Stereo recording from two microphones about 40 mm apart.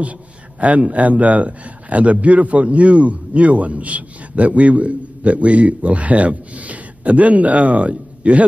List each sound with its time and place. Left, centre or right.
0.6 s a man's voice: right